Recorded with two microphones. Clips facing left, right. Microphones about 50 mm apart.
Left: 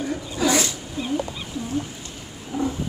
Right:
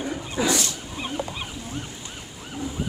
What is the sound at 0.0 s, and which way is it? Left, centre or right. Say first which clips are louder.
Wild animals: left 2 dB; right.